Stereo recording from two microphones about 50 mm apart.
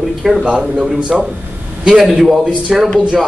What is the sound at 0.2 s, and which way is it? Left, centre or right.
Speech, centre.